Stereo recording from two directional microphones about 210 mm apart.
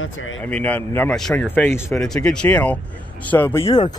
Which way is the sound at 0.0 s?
70° left (ahead or behind).